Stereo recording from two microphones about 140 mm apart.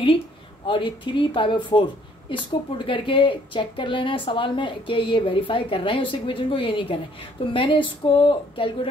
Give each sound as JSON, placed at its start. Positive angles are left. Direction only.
{"t": 0.7, "sound": "speech", "side_deg": 35}